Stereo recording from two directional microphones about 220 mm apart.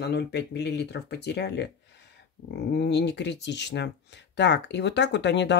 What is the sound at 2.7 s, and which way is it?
Speech, 50° left (ahead or behind).